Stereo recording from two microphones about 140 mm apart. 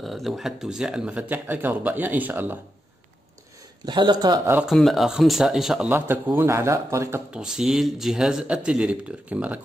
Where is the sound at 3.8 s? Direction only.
30° right (ahead or behind).